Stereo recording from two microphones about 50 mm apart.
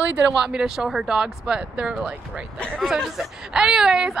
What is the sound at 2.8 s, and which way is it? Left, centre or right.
Speech, centre.